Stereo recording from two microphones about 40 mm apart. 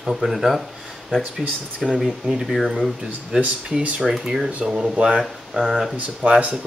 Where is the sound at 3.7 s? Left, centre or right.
Right.